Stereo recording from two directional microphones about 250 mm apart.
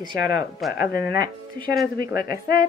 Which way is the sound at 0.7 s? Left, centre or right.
Left.